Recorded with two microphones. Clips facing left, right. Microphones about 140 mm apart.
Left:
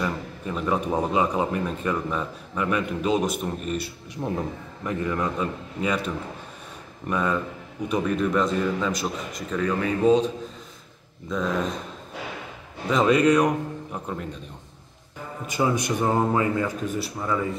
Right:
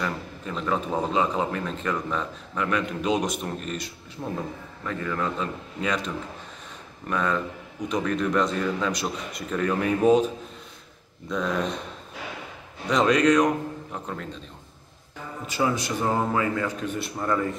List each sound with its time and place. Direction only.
0.0 s a man's voice: 10° left (ahead or behind)
12.8 s speech: 5° left (ahead or behind)
15.6 s speech: 15° left (ahead or behind)
17.2 s a man's voice: 5° left (ahead or behind)